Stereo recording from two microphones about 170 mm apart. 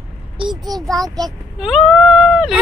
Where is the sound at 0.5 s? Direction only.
25° right (ahead or behind).